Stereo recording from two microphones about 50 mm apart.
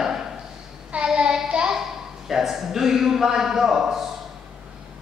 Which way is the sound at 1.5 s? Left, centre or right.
Centre.